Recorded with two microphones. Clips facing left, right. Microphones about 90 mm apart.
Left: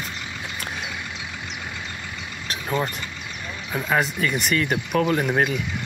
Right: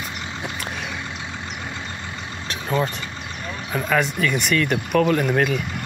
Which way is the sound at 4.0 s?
5° left (ahead or behind).